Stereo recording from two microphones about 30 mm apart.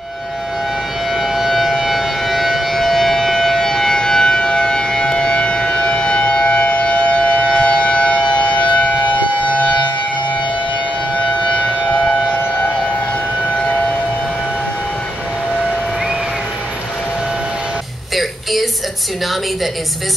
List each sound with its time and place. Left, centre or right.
1.1 s civil defense siren: centre; by 9.8 s left
11.1 s civil defense siren: left
18.1 s a sound: centre